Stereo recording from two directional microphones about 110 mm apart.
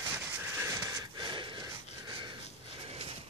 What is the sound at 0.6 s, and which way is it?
Wheeze, 30° right (ahead or behind).